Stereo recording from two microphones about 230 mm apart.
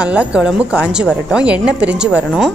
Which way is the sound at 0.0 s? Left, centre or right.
Centre.